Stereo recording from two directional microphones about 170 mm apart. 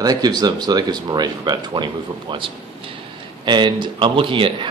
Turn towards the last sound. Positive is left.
turn(degrees=-30)  # may be behind; listen again after turning